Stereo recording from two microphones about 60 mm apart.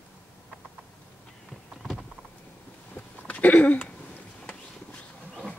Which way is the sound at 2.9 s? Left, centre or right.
Left.